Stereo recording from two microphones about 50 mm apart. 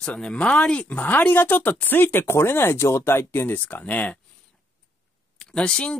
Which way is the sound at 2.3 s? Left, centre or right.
Left.